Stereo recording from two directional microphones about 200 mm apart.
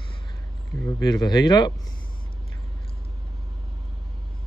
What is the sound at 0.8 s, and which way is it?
Speech, 20° left (ahead or behind).